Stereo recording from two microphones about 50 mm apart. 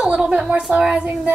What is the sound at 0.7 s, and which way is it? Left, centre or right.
Speech, centre.